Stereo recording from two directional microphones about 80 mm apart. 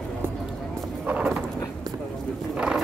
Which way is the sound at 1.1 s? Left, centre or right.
Centre.